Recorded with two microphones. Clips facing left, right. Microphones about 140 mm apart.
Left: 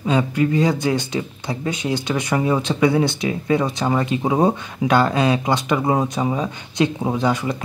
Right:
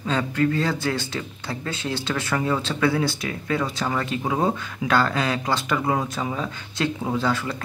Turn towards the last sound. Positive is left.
turn(degrees=20)  # may be behind; listen again after turning